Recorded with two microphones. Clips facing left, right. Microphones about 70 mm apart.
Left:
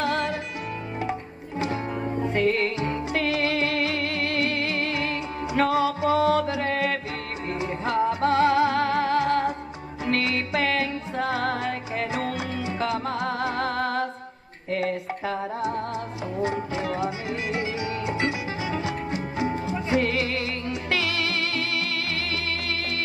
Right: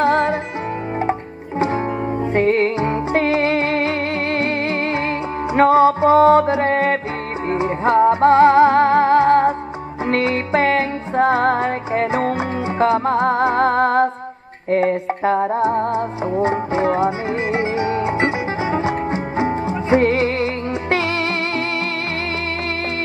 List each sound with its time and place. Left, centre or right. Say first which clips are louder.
0.0 s music: right 9 dB; right
2.3 s music: right 8 dB; right